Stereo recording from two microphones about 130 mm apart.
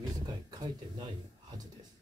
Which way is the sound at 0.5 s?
30° right (ahead or behind).